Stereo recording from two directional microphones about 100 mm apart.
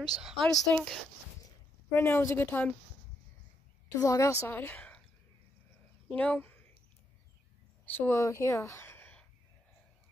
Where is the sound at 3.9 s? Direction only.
35° left (ahead or behind).